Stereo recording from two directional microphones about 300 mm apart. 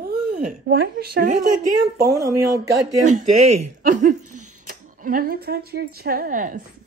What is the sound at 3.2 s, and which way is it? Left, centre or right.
Speech, right.